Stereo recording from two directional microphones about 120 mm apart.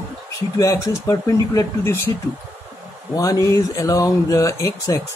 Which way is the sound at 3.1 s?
30° left (ahead or behind).